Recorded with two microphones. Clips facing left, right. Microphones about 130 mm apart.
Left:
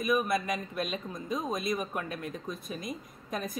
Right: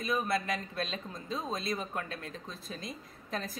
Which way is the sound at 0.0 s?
20° left (ahead or behind).